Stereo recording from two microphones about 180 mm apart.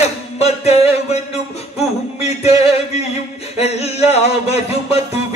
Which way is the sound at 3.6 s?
35° left (ahead or behind).